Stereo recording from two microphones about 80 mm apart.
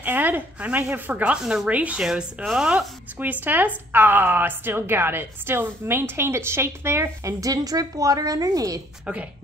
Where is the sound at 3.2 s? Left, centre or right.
Right.